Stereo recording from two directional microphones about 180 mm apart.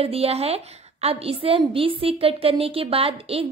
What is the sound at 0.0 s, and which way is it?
A woman's voice, 35° right (ahead or behind).